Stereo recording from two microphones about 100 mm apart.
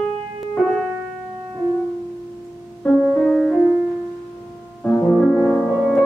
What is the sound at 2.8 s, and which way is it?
Music, 10° left (ahead or behind).